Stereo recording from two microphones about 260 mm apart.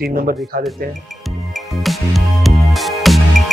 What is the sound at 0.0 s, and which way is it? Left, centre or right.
Speech, right.